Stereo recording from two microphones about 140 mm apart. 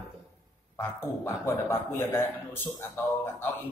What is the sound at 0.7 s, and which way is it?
A man's voice, 20° left (ahead or behind).